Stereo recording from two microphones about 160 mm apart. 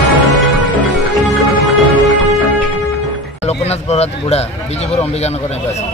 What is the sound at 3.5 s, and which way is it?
Speech, 40° left (ahead or behind).